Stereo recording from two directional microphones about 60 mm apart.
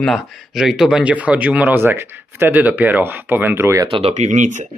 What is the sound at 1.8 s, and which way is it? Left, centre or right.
Speech, right.